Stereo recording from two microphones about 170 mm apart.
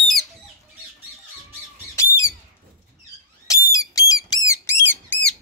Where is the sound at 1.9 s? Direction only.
15° left (ahead or behind).